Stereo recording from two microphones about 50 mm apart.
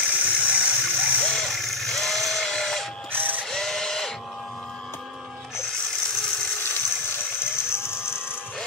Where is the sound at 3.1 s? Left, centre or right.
Right.